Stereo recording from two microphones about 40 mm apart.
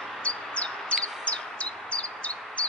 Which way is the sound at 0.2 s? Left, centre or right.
Left.